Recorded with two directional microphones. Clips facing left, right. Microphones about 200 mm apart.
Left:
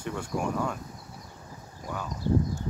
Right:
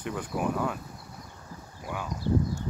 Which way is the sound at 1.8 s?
10° right (ahead or behind).